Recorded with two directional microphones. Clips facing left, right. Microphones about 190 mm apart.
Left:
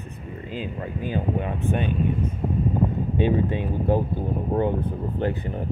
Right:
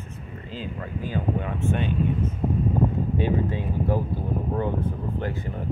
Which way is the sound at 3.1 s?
20° left (ahead or behind).